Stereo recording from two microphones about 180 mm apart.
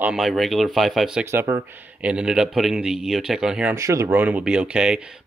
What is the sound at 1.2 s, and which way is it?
Speech, 15° right (ahead or behind).